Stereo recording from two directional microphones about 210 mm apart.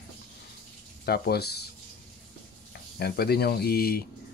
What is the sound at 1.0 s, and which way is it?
Speech, 50° left (ahead or behind).